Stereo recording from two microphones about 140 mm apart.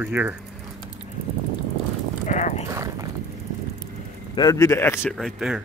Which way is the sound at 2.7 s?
20° right (ahead or behind).